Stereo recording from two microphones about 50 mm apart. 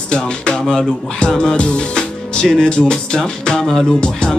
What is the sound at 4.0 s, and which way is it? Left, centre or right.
Speech, centre.